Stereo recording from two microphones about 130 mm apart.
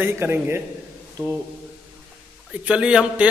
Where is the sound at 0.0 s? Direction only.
20° right (ahead or behind).